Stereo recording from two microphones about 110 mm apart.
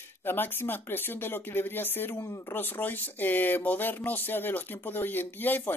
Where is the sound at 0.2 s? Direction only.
20° left (ahead or behind).